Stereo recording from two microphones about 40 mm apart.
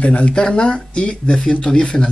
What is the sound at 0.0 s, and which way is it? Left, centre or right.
Speech, left.